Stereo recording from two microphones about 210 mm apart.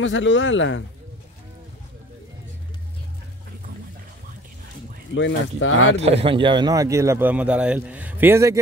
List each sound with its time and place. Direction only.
0.0 s speech: 60° left (ahead or behind)
5.1 s speech: 65° left (ahead or behind)
5.9 s a man's voice: 30° right (ahead or behind); by 8.5 s 10° right (ahead or behind)